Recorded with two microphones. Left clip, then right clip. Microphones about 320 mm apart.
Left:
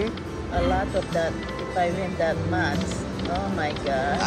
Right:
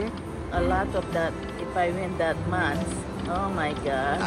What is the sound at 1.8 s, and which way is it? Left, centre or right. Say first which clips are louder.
Speech: left 1 dB; right.